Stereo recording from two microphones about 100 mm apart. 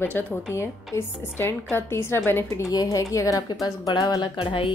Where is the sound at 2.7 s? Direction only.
40° left (ahead or behind).